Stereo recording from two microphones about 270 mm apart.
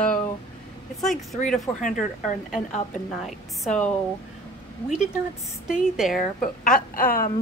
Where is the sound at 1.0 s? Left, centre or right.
Centre.